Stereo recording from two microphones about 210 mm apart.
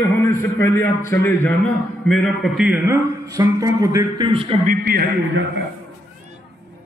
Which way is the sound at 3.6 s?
15° right (ahead or behind).